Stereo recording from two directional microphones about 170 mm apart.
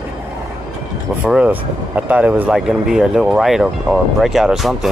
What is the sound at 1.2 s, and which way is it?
Speech, 10° right (ahead or behind).